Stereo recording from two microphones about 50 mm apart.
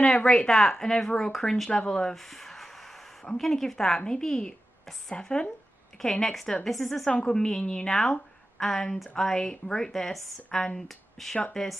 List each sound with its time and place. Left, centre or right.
0.0 s speech: centre
2.2 s a sound: centre
3.3 s speech: centre
6.0 s speech: centre
7.1 s speech: centre